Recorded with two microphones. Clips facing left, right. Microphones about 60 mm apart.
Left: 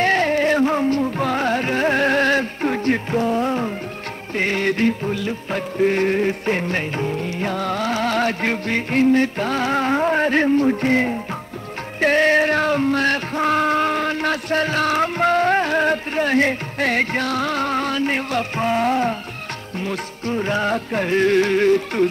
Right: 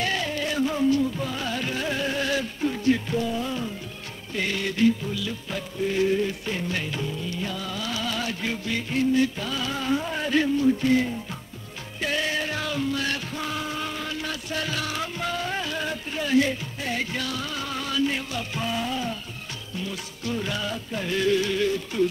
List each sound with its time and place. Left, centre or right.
0.0 s music: left